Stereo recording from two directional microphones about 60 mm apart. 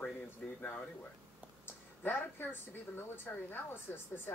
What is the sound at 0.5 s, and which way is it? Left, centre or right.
Speech, left.